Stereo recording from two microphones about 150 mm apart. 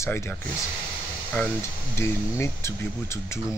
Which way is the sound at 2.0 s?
15° left (ahead or behind).